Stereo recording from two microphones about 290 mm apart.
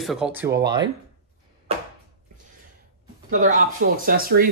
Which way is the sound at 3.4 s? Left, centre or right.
Right.